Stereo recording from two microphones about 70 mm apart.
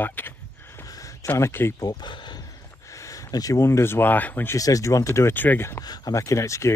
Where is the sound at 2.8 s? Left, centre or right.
Left.